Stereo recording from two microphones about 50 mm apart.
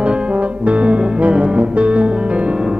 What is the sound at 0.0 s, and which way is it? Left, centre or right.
Music, right.